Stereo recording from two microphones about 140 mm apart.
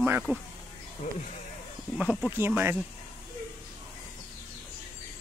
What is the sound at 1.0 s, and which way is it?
Speech, 50° left (ahead or behind).